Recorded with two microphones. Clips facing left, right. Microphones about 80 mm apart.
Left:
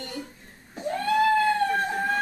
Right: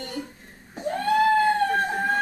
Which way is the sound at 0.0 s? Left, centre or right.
Right.